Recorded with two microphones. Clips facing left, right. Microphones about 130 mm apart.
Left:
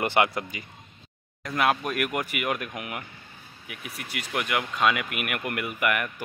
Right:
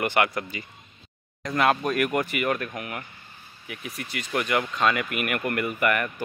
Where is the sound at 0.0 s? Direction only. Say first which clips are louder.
Even; 25° left (ahead or behind).